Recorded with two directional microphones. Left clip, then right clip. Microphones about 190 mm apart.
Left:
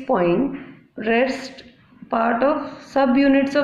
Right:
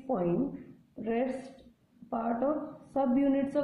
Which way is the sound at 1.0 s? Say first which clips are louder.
Left 13 dB; centre (ahead or behind).